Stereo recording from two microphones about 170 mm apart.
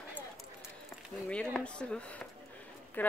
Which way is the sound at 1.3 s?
5° left (ahead or behind).